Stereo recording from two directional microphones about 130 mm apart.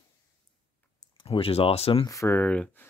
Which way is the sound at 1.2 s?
45° left (ahead or behind).